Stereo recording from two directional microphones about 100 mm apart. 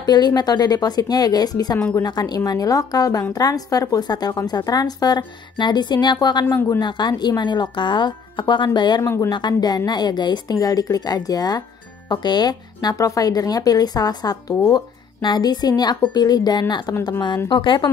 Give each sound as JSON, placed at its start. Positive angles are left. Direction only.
{"t": 0.0, "sound": "a woman's voice", "side_deg": 40}
{"t": 6.4, "sound": "speech", "side_deg": 20}
{"t": 6.8, "sound": "speech", "side_deg": 50}
{"t": 9.0, "sound": "speech", "side_deg": 25}
{"t": 9.3, "sound": "a woman's voice", "side_deg": 45}